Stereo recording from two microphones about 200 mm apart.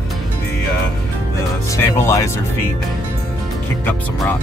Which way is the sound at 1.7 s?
15° left (ahead or behind).